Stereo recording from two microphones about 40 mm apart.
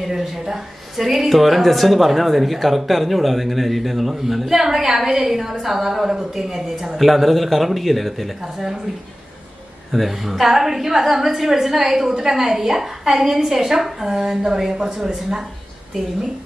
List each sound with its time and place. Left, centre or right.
0.0 s a woman's voice: centre
9.9 s a woman's voice: centre